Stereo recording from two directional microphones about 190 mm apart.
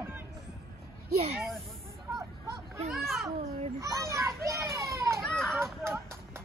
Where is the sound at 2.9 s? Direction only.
Centre (ahead or behind).